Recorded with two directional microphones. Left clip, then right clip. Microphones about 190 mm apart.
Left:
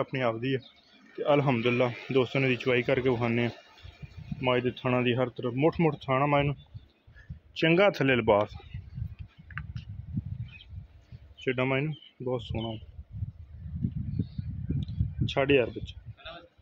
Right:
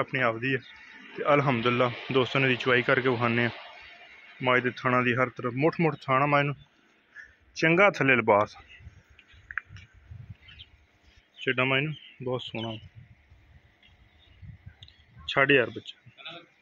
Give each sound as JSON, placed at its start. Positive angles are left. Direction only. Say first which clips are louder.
{"t": 0.0, "sound": "speech", "louder": "right 3 dB", "side_deg": 10}
{"t": 9.5, "sound": "a sound", "louder": "right 7 dB", "side_deg": 45}
{"t": 11.4, "sound": "speech", "louder": "right 3 dB", "side_deg": 10}
{"t": 15.3, "sound": "speech", "louder": "right 3 dB", "side_deg": 10}